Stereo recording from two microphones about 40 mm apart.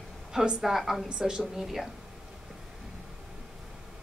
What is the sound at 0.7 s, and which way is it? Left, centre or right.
Speech, centre.